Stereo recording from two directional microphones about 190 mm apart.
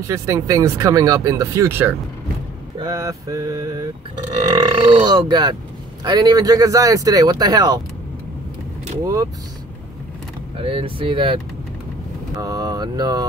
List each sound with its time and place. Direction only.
0.0 s speech: 15° right (ahead or behind)
9.0 s speech: 15° right (ahead or behind)
10.6 s speech: 30° right (ahead or behind)
12.4 s mantra: 20° right (ahead or behind)